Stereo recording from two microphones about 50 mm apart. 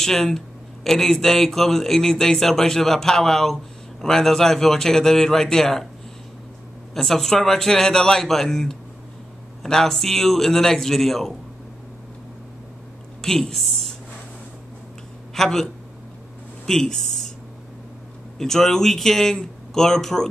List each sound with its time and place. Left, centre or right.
0.0 s a man's voice: centre
6.9 s a man's voice: centre
13.2 s a woman's voice: centre
15.3 s speech: centre
18.4 s a man's voice: centre